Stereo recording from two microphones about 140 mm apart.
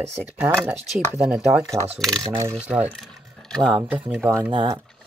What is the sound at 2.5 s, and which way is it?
Speech, 10° right (ahead or behind).